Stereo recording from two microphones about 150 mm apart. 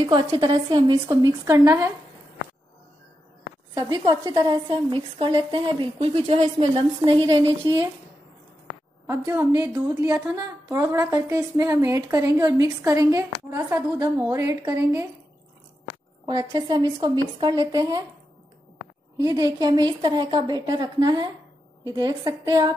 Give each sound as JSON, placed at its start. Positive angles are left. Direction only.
{"t": 0.0, "sound": "a woman's voice", "side_deg": -30}
{"t": 1.0, "sound": "a woman's voice", "side_deg": -20}
{"t": 3.7, "sound": "a woman's voice", "side_deg": -30}
{"t": 9.0, "sound": "a woman's voice", "side_deg": -20}
{"t": 16.3, "sound": "a woman's voice", "side_deg": -30}
{"t": 19.1, "sound": "a woman's voice", "side_deg": -25}